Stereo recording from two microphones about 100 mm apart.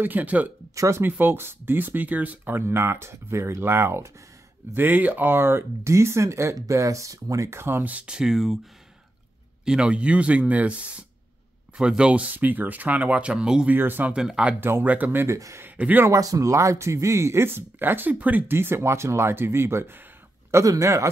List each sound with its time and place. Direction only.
0.0 s speech: 15° right (ahead or behind)
0.7 s speech: 30° right (ahead or behind); by 8.5 s 5° right (ahead or behind)
9.7 s speech: 10° right (ahead or behind)
13.7 s speech: 20° right (ahead or behind)
14.1 s speech: 5° right (ahead or behind)
14.6 s speech: 20° right (ahead or behind)
15.2 s speech: 30° right (ahead or behind)
15.6 s speech: 15° right (ahead or behind)
16.1 s speech: 35° right (ahead or behind)